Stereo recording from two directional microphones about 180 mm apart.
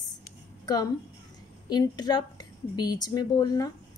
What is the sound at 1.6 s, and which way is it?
A woman's voice, 20° left (ahead or behind).